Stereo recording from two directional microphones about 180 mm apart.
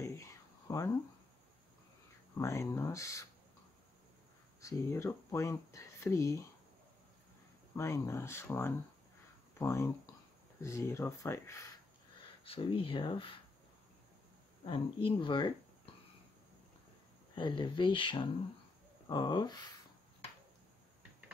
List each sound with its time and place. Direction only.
0.0 s a sound: 15° left (ahead or behind)
2.3 s speech: 15° left (ahead or behind)
4.6 s speech: 15° left (ahead or behind)
7.7 s speech: 15° left (ahead or behind)
12.4 s speech: 30° left (ahead or behind)
14.7 s speech: 30° left (ahead or behind)
17.4 s speech: 25° left (ahead or behind)